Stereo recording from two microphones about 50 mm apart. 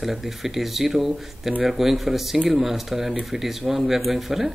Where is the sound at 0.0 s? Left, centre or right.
Centre.